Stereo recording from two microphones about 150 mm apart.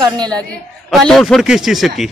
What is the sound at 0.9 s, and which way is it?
Speech, centre (ahead or behind).